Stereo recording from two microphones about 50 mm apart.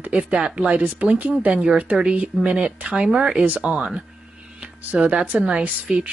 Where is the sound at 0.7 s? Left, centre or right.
Right.